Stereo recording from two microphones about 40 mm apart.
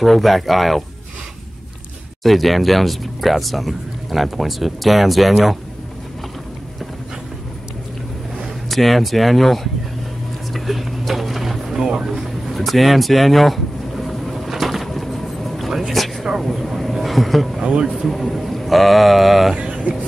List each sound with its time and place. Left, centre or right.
0.0 s speech: centre
2.2 s speech: centre
8.6 s speech: centre
10.5 s a sound: centre
11.8 s speech: centre
12.1 s a sound: centre
14.5 s vehicle: centre
15.9 s a sound: centre
16.3 s vehicle: centre
17.6 s speech: right
18.0 s speech: centre
19.5 s speech: right